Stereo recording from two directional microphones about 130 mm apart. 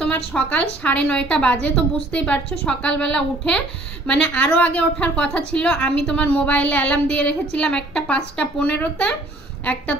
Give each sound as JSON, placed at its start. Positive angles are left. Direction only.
{"t": 0.3, "sound": "a woman's voice", "side_deg": 10}